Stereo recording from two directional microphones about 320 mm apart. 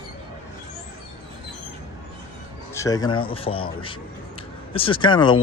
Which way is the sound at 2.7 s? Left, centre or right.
Centre.